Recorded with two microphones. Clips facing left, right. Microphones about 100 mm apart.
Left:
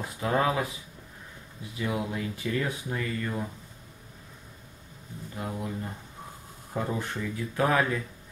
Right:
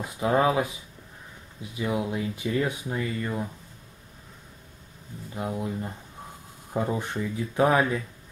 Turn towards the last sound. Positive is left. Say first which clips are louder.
# right 3 dB
turn(degrees=-20)  # may be behind; listen again after turning